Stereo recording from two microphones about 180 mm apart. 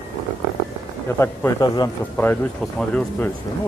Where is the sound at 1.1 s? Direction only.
15° left (ahead or behind).